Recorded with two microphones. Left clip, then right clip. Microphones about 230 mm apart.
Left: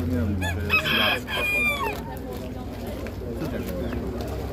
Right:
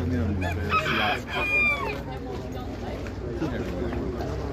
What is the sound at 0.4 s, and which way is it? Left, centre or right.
Chicken, left.